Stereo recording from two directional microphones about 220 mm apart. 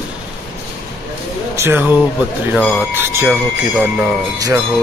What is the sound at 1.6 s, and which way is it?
Speech, 10° right (ahead or behind).